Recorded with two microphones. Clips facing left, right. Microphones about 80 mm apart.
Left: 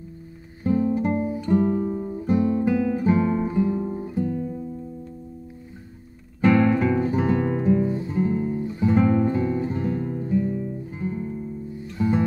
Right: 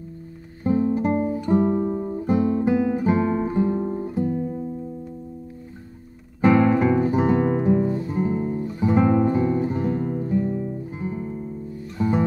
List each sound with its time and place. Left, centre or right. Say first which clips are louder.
0.7 s music: right 1 dB; right
1.3 s guitar: right 1 dB; right
2.6 s guitar: right 1 dB; right
4.1 s guitar: right 2 dB; right
6.4 s guitar: right 1 dB; right
12.0 s music: even; right